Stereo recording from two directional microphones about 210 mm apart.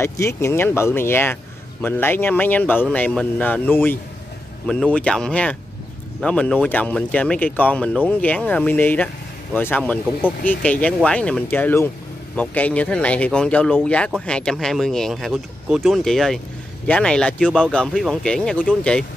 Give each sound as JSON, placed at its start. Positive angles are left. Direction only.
{"t": 0.0, "sound": "speech", "side_deg": 15}